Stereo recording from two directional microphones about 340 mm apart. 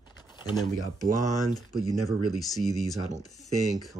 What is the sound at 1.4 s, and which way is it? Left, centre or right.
Speech, centre.